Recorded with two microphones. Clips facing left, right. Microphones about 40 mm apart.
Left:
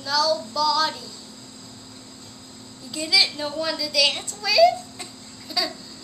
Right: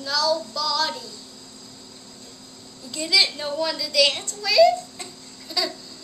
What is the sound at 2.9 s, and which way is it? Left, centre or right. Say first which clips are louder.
A woman's voice: even; centre.